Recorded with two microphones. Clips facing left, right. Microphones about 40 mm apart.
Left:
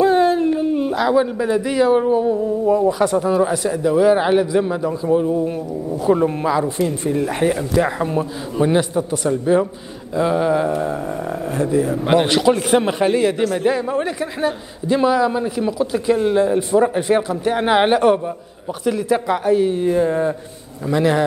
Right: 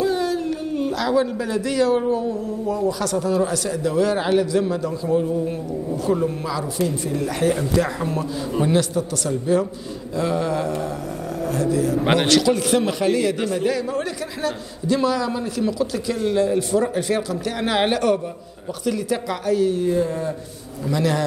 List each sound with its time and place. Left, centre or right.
0.0 s dog: left
0.7 s speech: centre
6.0 s speech: left
7.5 s speech: centre